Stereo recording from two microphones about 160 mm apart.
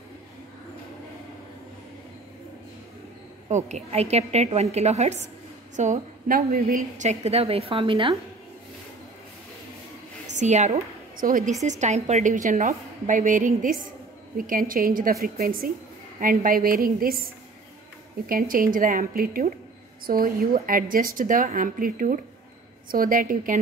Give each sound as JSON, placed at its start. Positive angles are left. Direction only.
{"t": 3.4, "sound": "a woman's voice", "side_deg": -45}
{"t": 5.8, "sound": "a woman's voice", "side_deg": -55}
{"t": 10.3, "sound": "a woman's voice", "side_deg": -45}
{"t": 11.2, "sound": "a woman's voice", "side_deg": -60}
{"t": 11.6, "sound": "a woman's voice", "side_deg": -50}
{"t": 18.3, "sound": "a woman's voice", "side_deg": -60}